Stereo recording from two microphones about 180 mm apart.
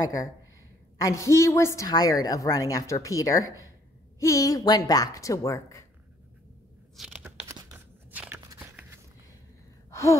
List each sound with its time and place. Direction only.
0.0 s a woman's voice: 20° left (ahead or behind)
7.0 s a sound: 5° right (ahead or behind)
8.1 s biting: 10° right (ahead or behind)
9.8 s gasp: 15° left (ahead or behind)